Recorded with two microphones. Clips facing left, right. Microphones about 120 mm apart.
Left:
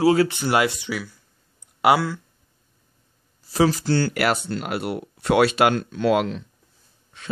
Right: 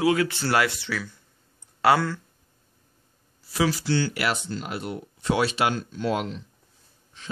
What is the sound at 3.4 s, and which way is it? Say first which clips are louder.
Speech: left 5 dB; 40° left (ahead or behind).